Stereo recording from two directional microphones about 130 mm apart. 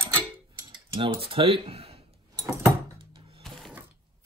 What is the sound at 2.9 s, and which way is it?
Music, 45° right (ahead or behind).